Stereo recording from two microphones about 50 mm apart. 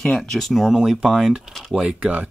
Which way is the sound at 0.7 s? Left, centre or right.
Centre.